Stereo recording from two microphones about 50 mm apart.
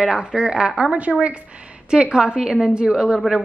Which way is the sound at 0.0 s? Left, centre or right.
Centre.